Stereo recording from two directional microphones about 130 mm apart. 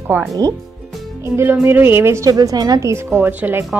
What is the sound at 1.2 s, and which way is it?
A woman's voice, 20° right (ahead or behind).